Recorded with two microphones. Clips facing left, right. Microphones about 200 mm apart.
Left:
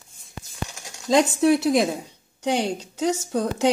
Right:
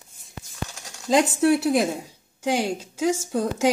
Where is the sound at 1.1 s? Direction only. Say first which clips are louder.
Left 1 dB; centre (ahead or behind).